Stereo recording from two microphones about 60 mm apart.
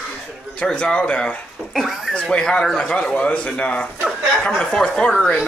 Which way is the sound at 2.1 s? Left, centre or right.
Centre.